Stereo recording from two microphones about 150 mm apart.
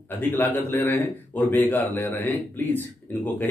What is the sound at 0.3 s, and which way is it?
Speech, 15° left (ahead or behind).